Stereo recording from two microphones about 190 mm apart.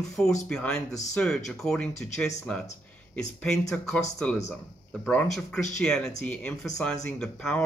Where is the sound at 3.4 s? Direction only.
5° left (ahead or behind).